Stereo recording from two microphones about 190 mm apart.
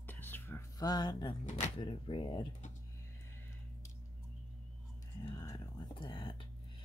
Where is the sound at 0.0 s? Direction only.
10° left (ahead or behind).